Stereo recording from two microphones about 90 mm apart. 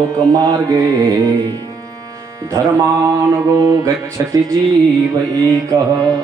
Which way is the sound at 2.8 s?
40° right (ahead or behind).